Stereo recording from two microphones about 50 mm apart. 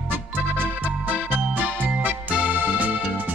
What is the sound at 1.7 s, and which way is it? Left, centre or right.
Music, right.